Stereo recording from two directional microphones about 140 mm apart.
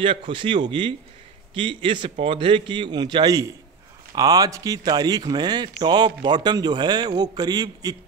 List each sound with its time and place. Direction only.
0.0 s a man's voice: 40° right (ahead or behind)